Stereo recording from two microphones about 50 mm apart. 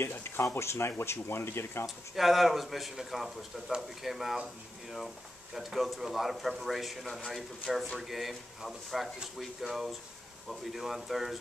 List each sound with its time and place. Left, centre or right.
0.6 s speech: left
2.1 s speech: centre